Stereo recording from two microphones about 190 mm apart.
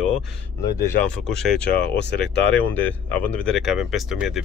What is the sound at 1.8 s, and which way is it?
Speech, 65° left (ahead or behind).